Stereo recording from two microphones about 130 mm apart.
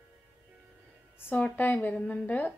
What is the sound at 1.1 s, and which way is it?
A woman's voice, 10° left (ahead or behind).